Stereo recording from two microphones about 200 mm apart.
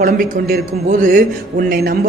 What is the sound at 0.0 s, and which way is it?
Speech, 45° right (ahead or behind).